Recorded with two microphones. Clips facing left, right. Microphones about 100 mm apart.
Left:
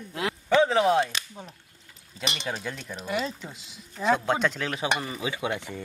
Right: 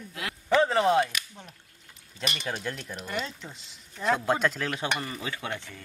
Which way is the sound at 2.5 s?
Centre (ahead or behind).